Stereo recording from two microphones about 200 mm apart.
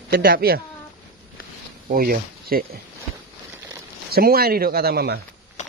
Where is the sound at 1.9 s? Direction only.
50° right (ahead or behind).